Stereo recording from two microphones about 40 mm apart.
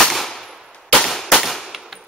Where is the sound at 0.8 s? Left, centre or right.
Centre.